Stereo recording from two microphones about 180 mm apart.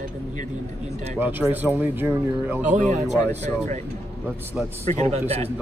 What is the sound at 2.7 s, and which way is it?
Speech, 40° right (ahead or behind).